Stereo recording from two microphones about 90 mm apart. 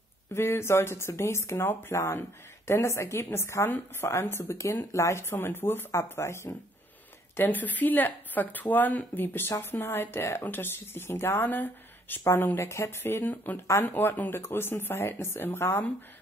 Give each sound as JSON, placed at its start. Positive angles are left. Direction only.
{"t": 0.3, "sound": "speech", "side_deg": 30}
{"t": 7.3, "sound": "speech", "side_deg": 20}